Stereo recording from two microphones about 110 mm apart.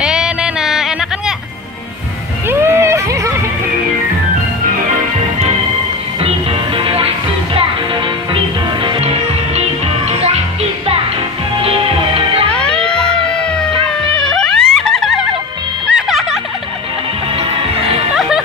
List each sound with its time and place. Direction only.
0.0 s music: 5° right (ahead or behind)
2.4 s a sound: 25° right (ahead or behind)
6.2 s music: 55° right (ahead or behind)
9.6 s music: 75° right (ahead or behind)
11.6 s music: 60° right (ahead or behind)
12.4 s music: 10° left (ahead or behind)
14.1 s music: 5° left (ahead or behind)